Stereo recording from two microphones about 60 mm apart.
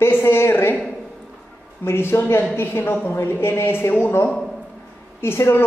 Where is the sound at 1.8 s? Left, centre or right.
Left.